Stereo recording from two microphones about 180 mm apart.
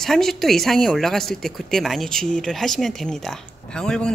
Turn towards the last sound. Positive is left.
turn(degrees=5)  # may be behind; listen again after turning